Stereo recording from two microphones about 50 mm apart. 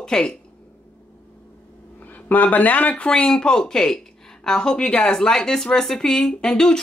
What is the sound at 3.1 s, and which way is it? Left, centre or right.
Speech, centre.